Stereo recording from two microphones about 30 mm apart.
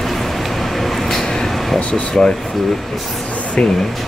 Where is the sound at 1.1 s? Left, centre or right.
Centre.